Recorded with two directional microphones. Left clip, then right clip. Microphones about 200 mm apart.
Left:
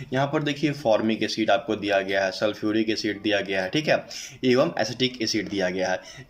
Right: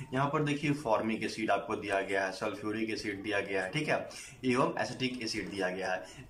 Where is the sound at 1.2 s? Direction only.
30° left (ahead or behind).